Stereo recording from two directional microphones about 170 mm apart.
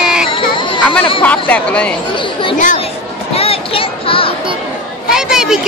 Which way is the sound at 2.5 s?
50° left (ahead or behind).